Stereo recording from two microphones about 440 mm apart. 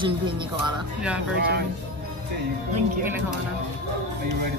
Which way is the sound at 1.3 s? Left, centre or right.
Right.